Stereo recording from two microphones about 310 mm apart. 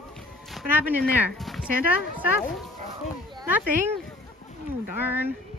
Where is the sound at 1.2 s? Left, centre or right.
Centre.